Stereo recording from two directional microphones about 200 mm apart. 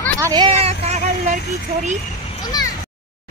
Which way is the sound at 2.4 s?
20° left (ahead or behind).